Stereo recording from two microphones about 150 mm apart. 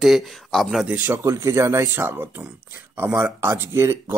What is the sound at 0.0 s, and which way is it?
Speech, centre (ahead or behind).